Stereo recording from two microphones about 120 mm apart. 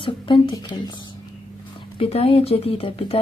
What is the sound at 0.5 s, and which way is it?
Speech, 35° left (ahead or behind).